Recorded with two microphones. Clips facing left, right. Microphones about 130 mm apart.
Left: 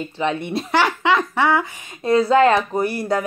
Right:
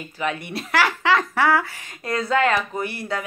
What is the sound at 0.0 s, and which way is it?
Speech, 30° left (ahead or behind).